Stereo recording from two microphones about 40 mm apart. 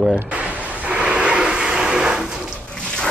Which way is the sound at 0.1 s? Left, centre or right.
Right.